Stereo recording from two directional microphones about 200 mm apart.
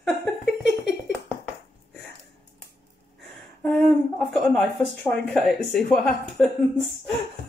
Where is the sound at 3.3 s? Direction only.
Centre (ahead or behind).